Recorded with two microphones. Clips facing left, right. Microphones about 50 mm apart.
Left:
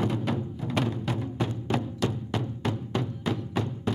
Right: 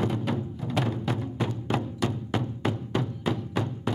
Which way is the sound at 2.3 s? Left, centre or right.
Centre.